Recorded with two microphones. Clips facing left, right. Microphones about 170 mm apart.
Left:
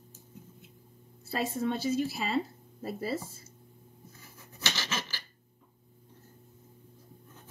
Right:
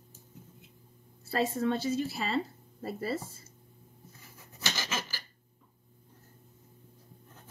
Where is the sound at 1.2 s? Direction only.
10° left (ahead or behind).